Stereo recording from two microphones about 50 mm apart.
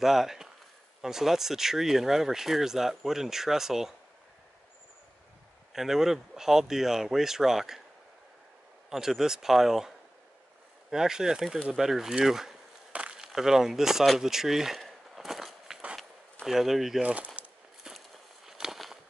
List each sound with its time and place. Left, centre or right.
0.0 s speech: centre
5.7 s speech: centre
8.9 s speech: centre
12.9 s a sound: right
13.2 s speech: centre
15.1 s a sound: centre
16.4 s speech: centre
17.0 s speech: right
17.8 s walk: centre